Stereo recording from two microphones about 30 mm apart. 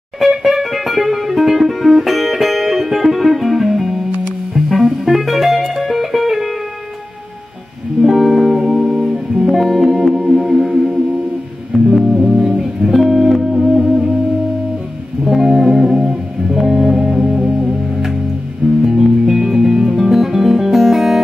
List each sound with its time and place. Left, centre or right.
0.2 s music: centre
8.1 s music: centre
15.2 s music: centre
16.5 s music: centre
17.3 s music: right
18.9 s music: centre